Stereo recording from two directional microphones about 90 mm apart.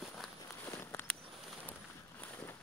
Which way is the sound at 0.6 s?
25° left (ahead or behind).